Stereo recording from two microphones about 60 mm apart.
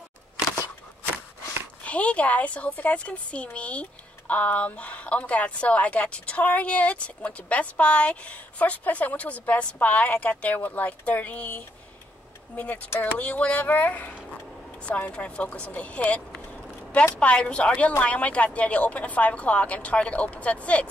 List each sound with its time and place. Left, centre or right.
1.9 s speech: left